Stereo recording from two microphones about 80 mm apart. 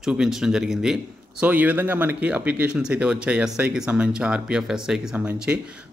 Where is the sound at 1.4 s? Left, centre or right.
Centre.